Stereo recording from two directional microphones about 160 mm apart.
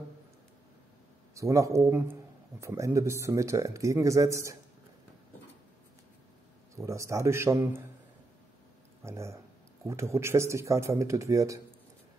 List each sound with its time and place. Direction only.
1.3 s speech: 20° right (ahead or behind)
6.8 s speech: 20° right (ahead or behind)
9.0 s speech: 15° right (ahead or behind)